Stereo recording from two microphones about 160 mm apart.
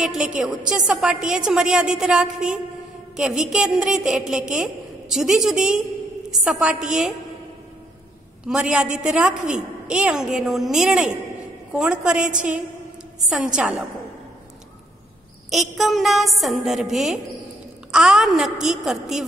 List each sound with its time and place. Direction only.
0.0 s a woman's voice: 5° right (ahead or behind)
8.5 s a woman's voice: 5° right (ahead or behind)
15.5 s a woman's voice: centre (ahead or behind)